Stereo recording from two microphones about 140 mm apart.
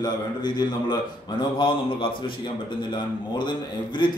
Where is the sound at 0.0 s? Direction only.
30° left (ahead or behind).